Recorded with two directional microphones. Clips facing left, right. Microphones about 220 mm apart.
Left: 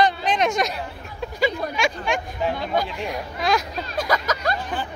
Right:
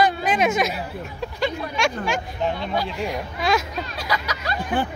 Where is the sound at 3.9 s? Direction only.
45° left (ahead or behind).